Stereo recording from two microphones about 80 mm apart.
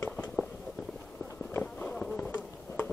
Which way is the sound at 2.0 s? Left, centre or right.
Centre.